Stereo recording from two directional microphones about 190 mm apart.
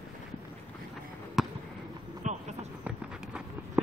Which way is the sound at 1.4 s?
Centre (ahead or behind).